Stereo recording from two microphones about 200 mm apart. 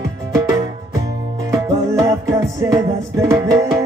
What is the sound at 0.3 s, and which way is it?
Music, 15° right (ahead or behind).